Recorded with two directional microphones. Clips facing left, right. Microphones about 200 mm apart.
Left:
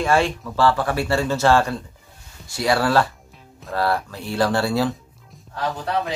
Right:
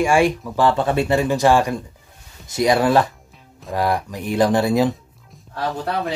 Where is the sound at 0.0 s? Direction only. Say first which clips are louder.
Right 3 dB; 15° right (ahead or behind).